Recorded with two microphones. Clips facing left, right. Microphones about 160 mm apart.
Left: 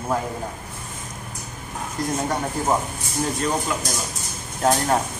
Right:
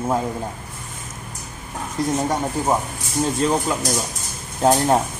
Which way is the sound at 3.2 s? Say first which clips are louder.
Right 4 dB; 30° right (ahead or behind).